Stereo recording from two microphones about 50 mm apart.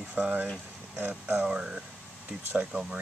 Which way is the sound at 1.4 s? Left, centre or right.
Centre.